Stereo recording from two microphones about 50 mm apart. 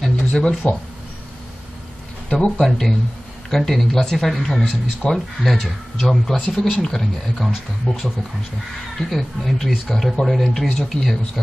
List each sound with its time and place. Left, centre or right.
0.0 s a sound: centre
2.4 s speech: centre
6.3 s speech: left
6.8 s speech: centre
7.4 s speech: centre